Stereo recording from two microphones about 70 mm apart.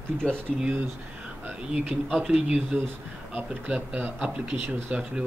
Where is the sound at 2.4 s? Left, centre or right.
Centre.